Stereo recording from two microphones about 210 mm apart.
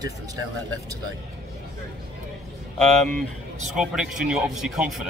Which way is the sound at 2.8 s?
5° left (ahead or behind).